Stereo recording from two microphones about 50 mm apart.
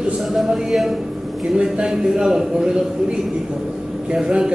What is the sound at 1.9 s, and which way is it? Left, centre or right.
Speech, centre.